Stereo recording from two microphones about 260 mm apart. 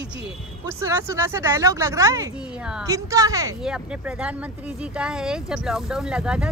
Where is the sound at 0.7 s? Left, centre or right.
Centre.